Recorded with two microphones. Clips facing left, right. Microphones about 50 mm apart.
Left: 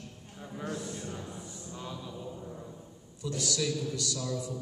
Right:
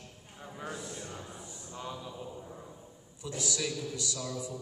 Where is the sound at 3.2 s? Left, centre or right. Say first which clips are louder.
Left 3 dB; right.